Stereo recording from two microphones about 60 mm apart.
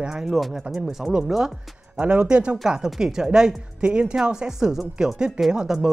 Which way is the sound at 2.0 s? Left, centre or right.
Centre.